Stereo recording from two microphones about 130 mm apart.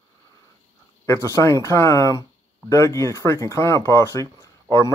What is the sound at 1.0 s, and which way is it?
Speech, 20° left (ahead or behind).